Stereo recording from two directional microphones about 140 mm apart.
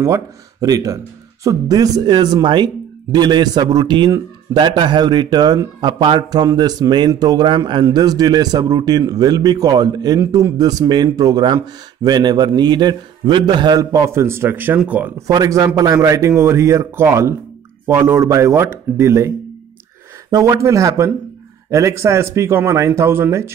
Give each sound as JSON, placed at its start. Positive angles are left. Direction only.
{"t": 0.0, "sound": "speech", "side_deg": -25}
{"t": 15.2, "sound": "speech", "side_deg": -25}